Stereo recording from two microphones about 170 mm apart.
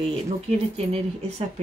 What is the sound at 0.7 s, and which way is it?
Speech, 40° right (ahead or behind).